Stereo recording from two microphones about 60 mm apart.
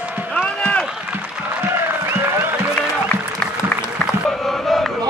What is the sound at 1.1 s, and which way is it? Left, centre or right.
Applause, right.